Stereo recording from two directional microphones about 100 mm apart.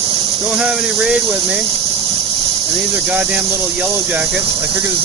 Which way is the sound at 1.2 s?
30° right (ahead or behind).